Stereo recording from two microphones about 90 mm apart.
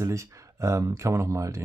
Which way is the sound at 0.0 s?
35° right (ahead or behind).